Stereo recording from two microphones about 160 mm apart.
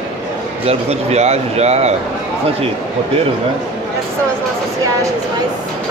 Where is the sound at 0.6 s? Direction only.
40° right (ahead or behind).